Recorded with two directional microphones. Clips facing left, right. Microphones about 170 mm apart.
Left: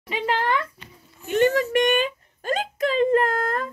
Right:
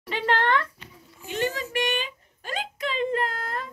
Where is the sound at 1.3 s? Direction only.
60° left (ahead or behind).